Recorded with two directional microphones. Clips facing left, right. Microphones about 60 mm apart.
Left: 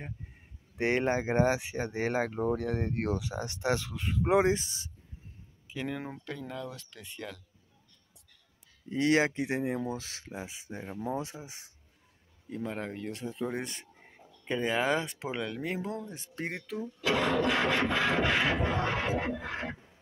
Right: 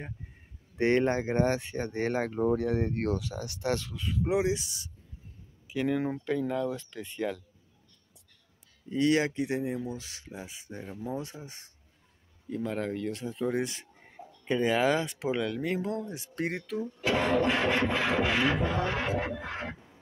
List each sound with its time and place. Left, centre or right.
0.7 s speech: centre
3.2 s speech: left
4.2 s speech: left
5.7 s speech: centre
6.0 s speech: centre
6.8 s beatboxing: right
8.9 s speech: left; by 16.0 s centre
16.3 s speech: centre
17.0 s beatboxing: right
18.0 s speech: centre
18.9 s a sound: centre